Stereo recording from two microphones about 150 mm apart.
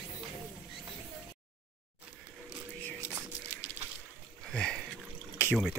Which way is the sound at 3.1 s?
15° right (ahead or behind).